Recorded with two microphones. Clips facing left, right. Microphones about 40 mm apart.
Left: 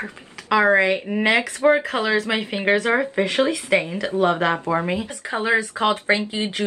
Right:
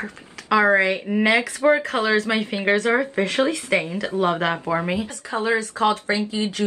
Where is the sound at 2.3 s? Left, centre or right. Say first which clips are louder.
Even; centre.